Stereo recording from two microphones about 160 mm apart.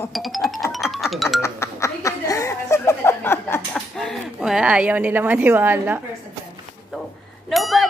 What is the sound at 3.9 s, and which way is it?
Speech, centre (ahead or behind).